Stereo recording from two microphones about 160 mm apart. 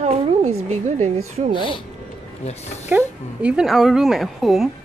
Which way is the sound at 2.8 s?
10° right (ahead or behind).